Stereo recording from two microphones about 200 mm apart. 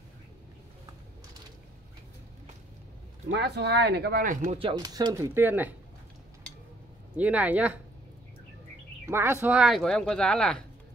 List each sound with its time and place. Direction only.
3.3 s speech: 55° right (ahead or behind)
4.6 s speech: 25° right (ahead or behind)
7.2 s speech: 5° right (ahead or behind)
9.0 s speech: 10° right (ahead or behind)